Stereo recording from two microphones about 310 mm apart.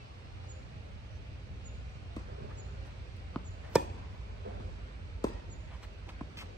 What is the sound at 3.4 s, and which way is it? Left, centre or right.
Chop, centre.